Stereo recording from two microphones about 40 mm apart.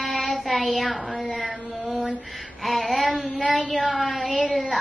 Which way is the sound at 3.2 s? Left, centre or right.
Left.